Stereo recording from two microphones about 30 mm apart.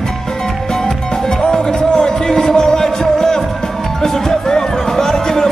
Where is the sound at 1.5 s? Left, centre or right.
Left.